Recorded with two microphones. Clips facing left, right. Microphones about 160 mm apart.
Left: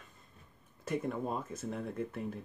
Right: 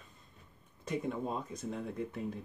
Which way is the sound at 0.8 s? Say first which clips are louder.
Left 1 dB; centre (ahead or behind).